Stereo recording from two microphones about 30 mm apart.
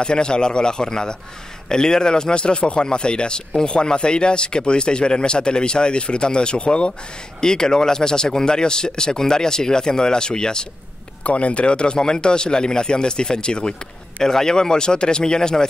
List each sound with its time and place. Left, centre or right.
0.0 s speech: left
7.3 s speech: left
11.2 s speech: left
14.2 s speech: centre